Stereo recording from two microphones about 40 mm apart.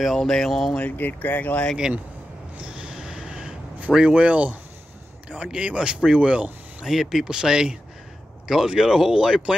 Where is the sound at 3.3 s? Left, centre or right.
Right.